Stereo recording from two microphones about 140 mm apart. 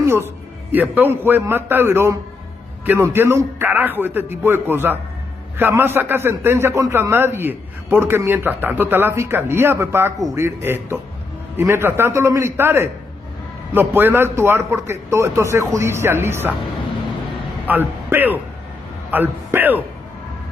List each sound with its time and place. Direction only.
0.0 s a man's voice: 15° right (ahead or behind)
17.6 s a man's voice: 15° right (ahead or behind)